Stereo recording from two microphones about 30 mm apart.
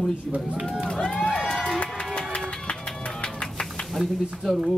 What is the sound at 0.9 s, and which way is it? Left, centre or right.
Crowd, left.